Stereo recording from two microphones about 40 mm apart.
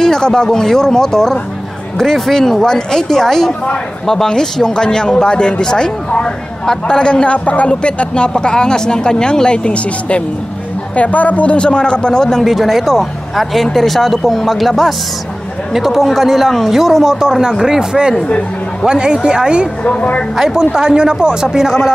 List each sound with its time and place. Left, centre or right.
0.0 s speech: centre
12.4 s speech: centre
17.2 s speech: centre
19.8 s speech: left
20.7 s speech: centre
21.5 s speech: centre